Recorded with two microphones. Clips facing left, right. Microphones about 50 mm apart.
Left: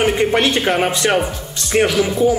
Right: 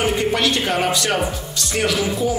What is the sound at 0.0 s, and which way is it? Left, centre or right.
Speech, left.